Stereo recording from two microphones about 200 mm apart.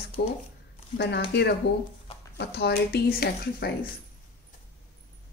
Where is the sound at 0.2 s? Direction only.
55° left (ahead or behind).